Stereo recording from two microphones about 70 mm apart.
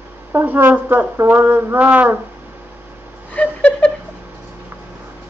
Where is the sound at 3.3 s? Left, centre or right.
Centre.